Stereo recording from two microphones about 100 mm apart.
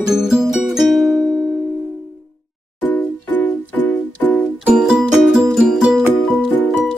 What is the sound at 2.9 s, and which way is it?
Music, 15° left (ahead or behind).